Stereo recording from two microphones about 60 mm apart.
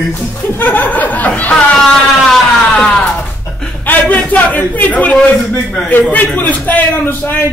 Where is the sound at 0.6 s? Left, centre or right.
Left.